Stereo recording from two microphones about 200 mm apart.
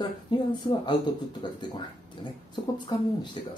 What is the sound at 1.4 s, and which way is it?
Speech, 25° left (ahead or behind).